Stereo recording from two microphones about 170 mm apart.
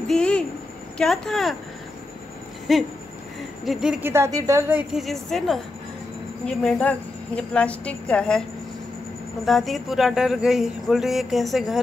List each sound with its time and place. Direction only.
0.1 s a sound: 5° left (ahead or behind)
0.9 s speech: 5° left (ahead or behind)
2.7 s speech: centre (ahead or behind)
4.1 s a woman's voice: 15° right (ahead or behind)
5.0 s a woman's voice: centre (ahead or behind)
9.5 s speech: centre (ahead or behind)